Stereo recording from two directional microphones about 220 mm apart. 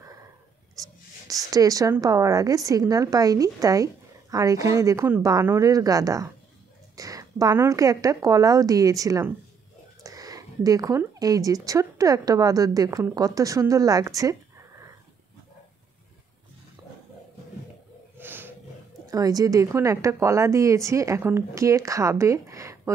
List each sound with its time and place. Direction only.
1.2 s speech: 15° right (ahead or behind)
18.1 s snort: 10° right (ahead or behind)
19.0 s speech: 15° right (ahead or behind)